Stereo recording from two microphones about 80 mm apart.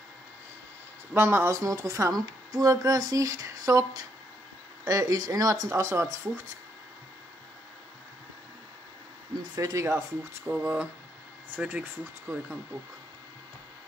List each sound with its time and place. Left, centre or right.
1.1 s speech: right
9.6 s speech: right
10.4 s speech: right